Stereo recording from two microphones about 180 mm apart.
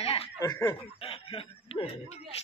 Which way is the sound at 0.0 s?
35° left (ahead or behind).